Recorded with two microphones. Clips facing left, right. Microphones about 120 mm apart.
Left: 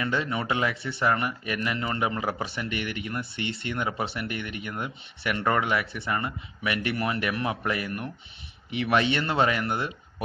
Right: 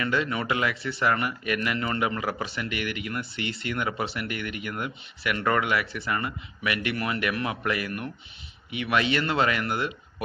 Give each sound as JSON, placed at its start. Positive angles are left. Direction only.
{"t": 0.0, "sound": "speech", "side_deg": 25}